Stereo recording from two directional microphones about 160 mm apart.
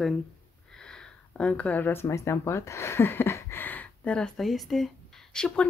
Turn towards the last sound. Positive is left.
turn(degrees=5)  # may be behind; listen again after turning